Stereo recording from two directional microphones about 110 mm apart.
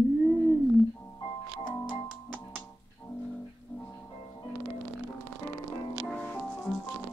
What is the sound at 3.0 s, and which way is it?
Music, 25° left (ahead or behind).